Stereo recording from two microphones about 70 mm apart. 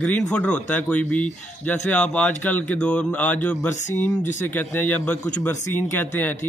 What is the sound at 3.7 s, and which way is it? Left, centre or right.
Speech, left.